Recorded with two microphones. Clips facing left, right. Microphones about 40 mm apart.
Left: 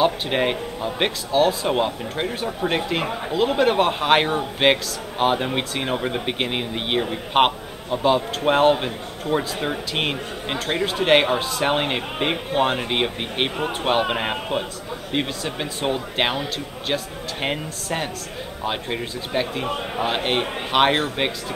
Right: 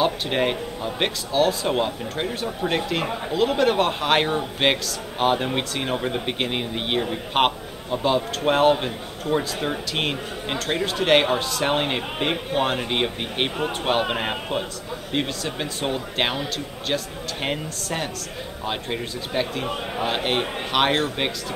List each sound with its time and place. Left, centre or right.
0.0 s speech: centre